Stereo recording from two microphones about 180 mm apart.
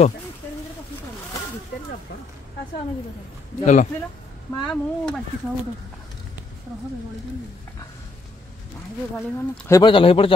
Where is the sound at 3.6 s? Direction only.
45° left (ahead or behind).